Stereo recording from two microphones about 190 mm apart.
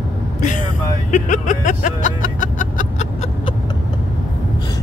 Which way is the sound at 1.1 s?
40° left (ahead or behind).